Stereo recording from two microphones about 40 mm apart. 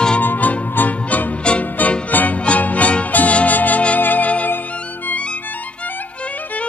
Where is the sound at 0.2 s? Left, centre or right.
Left.